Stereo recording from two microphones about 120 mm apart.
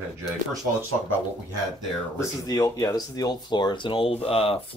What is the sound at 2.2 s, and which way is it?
Speech, 35° left (ahead or behind).